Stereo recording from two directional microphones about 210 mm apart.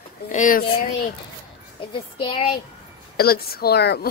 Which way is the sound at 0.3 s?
40° left (ahead or behind).